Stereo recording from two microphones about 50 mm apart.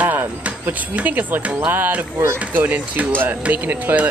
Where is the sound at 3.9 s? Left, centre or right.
Right.